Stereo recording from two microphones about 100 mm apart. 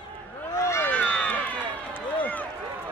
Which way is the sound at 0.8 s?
15° left (ahead or behind).